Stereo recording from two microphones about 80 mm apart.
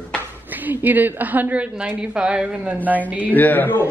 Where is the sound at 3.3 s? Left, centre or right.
Left.